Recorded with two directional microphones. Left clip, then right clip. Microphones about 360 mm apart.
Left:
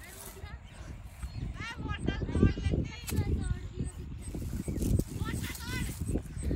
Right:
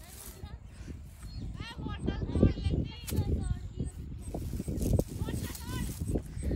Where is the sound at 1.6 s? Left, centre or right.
Right.